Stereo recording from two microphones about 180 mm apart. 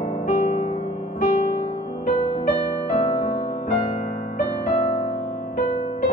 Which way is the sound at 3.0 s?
35° left (ahead or behind).